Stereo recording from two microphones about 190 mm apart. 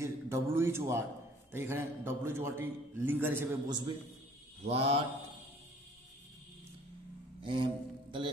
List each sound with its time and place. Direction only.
0.0 s a man's voice: 15° right (ahead or behind)
4.6 s speech: 30° right (ahead or behind)
7.4 s music: 25° right (ahead or behind)